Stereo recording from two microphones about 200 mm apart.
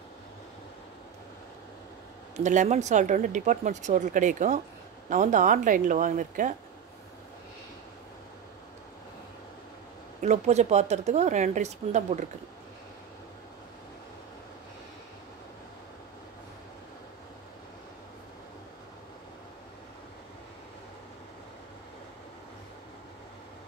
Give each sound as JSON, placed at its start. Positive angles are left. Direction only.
{"t": 2.3, "sound": "speech", "side_deg": -35}
{"t": 10.2, "sound": "speech", "side_deg": -35}